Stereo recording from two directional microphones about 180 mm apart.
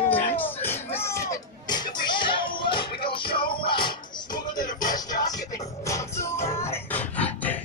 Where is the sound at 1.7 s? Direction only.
25° left (ahead or behind).